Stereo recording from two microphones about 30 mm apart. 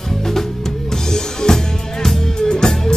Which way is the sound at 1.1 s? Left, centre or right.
Centre.